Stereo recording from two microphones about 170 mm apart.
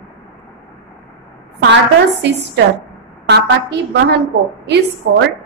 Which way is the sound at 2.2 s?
85° right.